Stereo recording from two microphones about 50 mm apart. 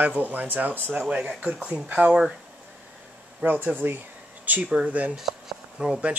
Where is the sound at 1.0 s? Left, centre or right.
Right.